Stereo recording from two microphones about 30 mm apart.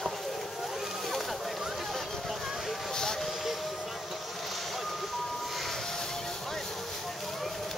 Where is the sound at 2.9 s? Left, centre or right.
Centre.